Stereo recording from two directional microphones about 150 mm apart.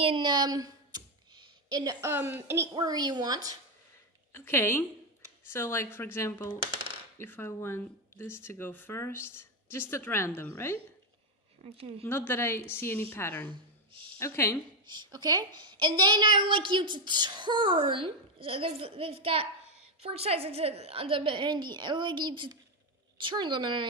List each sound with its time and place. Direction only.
0.0 s a sound: 35° right (ahead or behind); by 2.7 s 15° right (ahead or behind)
2.7 s speech: 30° right (ahead or behind)
4.3 s speech: 15° left (ahead or behind)
11.6 s a woman's voice: 40° right (ahead or behind)
12.0 s speech: 15° left (ahead or behind)
14.9 s a woman's voice: 30° right (ahead or behind)